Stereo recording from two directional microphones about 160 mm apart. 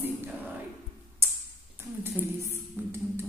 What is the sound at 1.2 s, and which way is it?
Tick-tock, 15° right (ahead or behind).